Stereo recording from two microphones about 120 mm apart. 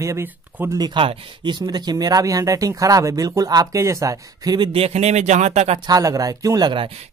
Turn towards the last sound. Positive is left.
turn(degrees=-40)  # may be behind; listen again after turning